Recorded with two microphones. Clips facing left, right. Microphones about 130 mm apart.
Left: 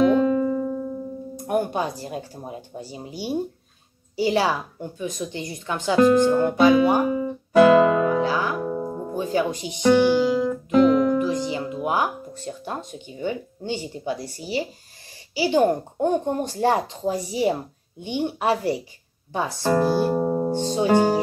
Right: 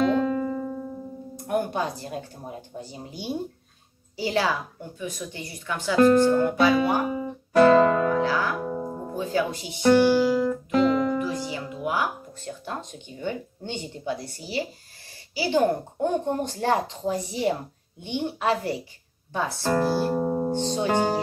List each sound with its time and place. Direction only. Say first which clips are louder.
0.0 s music: left 5 dB; 5° left (ahead or behind)
1.3 s speech: left 2 dB; 15° left (ahead or behind)
7.5 s music: left 2 dB; 5° left (ahead or behind)
8.2 s music: left 2 dB; 15° left (ahead or behind)
8.6 s music: left 3 dB; centre (ahead or behind)
9.1 s speech: left 2 dB; 20° left (ahead or behind)
10.5 s music: left 4 dB; centre (ahead or behind)
11.1 s speech: left 5 dB; 20° left (ahead or behind)
13.2 s speech: left 3 dB; 10° left (ahead or behind)
20.2 s music: left 2 dB; centre (ahead or behind)
20.5 s speech: left 7 dB; 10° left (ahead or behind)